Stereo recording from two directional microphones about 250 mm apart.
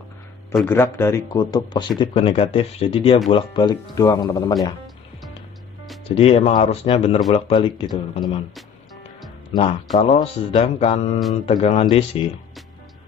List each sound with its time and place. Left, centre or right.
0.6 s speech: centre
6.0 s speech: left
9.9 s speech: left